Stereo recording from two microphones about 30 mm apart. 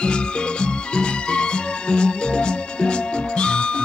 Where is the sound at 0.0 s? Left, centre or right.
Left.